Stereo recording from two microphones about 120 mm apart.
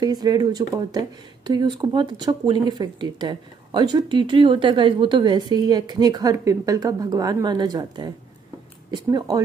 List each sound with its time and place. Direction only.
0.0 s speech: 35° right (ahead or behind)